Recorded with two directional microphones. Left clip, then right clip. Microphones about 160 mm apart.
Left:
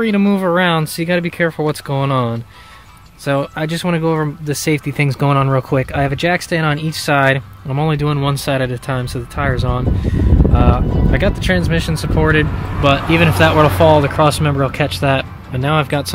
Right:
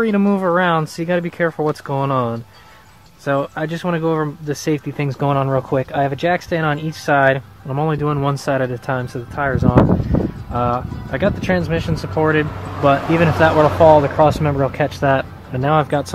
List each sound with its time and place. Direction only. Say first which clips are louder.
0.0 s speech: left 1 dB; 5° left (ahead or behind)
0.4 s speech: left 1 dB; 15° left (ahead or behind)